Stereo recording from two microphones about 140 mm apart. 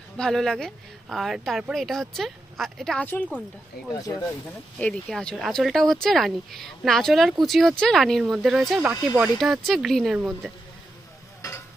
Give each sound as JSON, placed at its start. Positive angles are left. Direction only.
{"t": 0.2, "sound": "speech", "side_deg": 5}
{"t": 4.7, "sound": "speech", "side_deg": 5}